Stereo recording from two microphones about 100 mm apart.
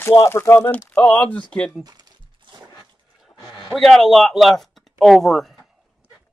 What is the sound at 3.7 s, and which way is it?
Speech, centre (ahead or behind).